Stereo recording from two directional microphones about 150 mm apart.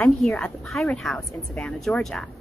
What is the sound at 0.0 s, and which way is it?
Speech, 5° left (ahead or behind).